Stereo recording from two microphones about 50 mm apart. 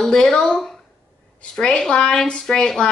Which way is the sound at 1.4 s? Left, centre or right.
Centre.